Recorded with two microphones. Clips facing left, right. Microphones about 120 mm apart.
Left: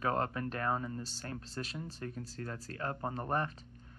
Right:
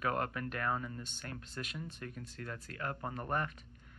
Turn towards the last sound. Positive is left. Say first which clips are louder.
# left 2 dB
turn(degrees=30)  # may be behind; listen again after turning